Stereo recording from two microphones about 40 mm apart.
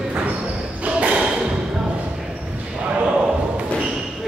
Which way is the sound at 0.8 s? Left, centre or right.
Right.